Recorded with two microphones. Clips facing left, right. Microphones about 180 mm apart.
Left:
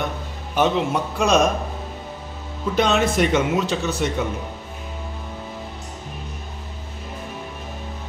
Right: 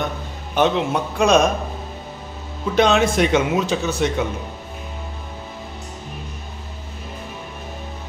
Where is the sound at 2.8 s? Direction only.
5° left (ahead or behind).